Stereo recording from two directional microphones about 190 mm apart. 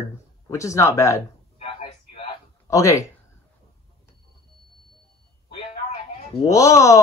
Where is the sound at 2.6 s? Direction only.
15° left (ahead or behind).